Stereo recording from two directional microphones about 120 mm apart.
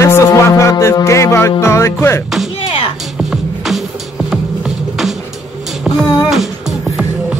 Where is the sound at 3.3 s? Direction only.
Centre (ahead or behind).